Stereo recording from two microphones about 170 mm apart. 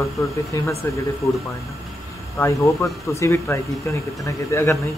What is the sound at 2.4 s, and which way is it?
Speech, 15° left (ahead or behind).